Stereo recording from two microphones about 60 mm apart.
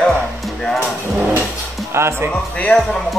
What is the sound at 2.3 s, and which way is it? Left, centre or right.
Speech, left.